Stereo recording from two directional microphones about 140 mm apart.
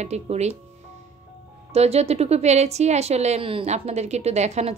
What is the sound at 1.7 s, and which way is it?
A woman's voice, 50° right (ahead or behind).